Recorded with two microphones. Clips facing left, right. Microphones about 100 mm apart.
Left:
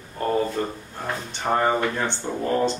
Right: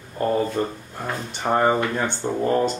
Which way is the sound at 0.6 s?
30° right (ahead or behind).